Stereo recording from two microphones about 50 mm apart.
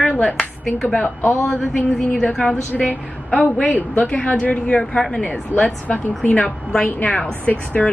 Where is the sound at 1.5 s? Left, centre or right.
Centre.